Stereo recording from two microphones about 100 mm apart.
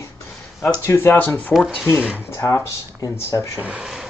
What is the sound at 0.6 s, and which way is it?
Speech, 30° left (ahead or behind).